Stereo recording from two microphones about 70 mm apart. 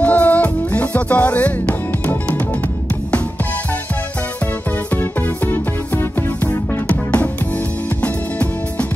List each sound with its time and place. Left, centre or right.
0.0 s music: left
4.9 s music: left